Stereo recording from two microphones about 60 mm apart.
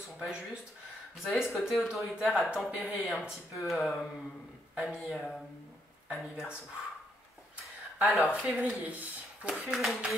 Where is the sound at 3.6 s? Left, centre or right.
Centre.